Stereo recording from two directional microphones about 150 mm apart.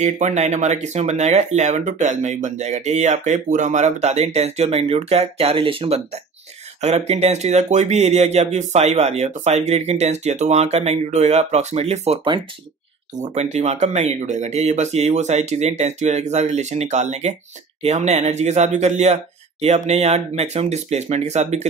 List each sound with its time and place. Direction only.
0.0 s speech: 50° right (ahead or behind)
13.2 s speech: 50° right (ahead or behind)